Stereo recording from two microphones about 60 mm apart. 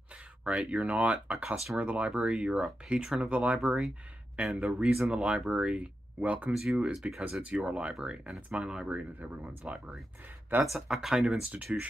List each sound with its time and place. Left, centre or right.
0.1 s speech: centre
4.5 s speech: centre; by 6.5 s right
6.5 s speech: centre
7.4 s speech: right
8.8 s speech: right
10.6 s speech: centre
11.5 s speech: right